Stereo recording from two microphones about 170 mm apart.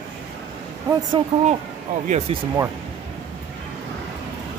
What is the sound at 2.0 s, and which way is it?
Speech, 40° right (ahead or behind).